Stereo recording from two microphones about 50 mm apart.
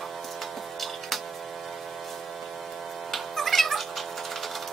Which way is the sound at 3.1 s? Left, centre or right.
Centre.